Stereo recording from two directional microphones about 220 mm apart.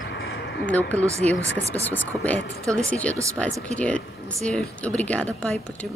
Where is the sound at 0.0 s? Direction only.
55° left (ahead or behind).